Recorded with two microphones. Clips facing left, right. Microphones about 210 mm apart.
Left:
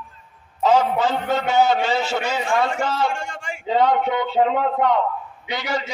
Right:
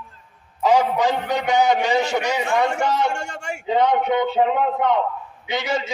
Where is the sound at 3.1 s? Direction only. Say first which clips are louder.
Right 1 dB; 70° right (ahead or behind).